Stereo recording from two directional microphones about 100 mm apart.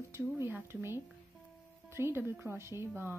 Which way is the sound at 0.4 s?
20° right (ahead or behind).